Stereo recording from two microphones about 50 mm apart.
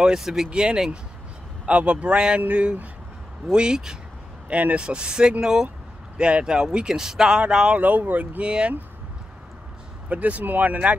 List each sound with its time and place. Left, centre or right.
0.0 s speech: centre
4.5 s speech: right; by 7.4 s centre
7.7 s speech: right
10.0 s speech: right